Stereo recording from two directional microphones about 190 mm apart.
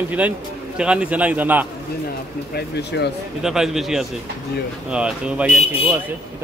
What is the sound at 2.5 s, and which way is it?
Speech, 60° left (ahead or behind).